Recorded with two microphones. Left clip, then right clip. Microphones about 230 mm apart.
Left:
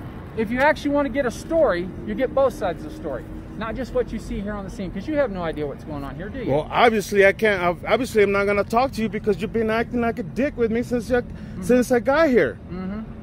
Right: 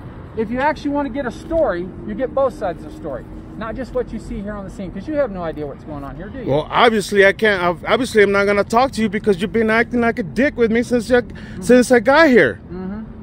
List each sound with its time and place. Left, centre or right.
0.4 s speech: centre
6.5 s speech: centre; by 12.5 s right